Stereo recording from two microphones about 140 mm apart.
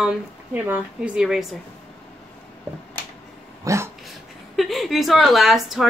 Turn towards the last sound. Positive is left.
turn(degrees=0)  # may be behind; listen again after turning